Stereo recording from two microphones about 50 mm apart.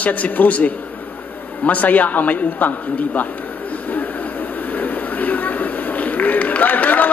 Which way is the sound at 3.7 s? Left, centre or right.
Left.